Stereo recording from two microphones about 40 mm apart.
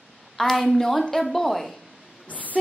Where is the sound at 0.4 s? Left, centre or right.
Centre.